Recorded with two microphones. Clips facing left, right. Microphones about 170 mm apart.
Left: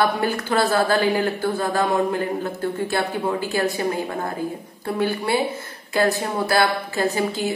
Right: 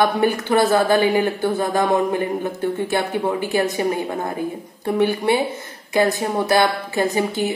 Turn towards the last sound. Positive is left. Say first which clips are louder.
# right 2 dB
turn(degrees=-20)  # may be behind; listen again after turning